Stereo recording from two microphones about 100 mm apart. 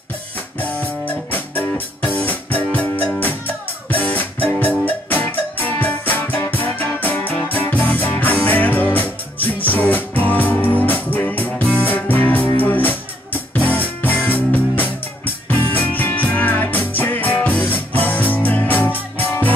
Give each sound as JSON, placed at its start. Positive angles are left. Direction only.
{"t": 0.6, "sound": "music", "side_deg": 15}